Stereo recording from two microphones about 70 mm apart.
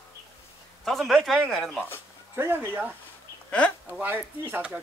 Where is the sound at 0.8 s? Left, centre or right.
Centre.